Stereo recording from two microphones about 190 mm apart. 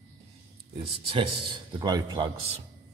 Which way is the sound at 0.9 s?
30° right (ahead or behind).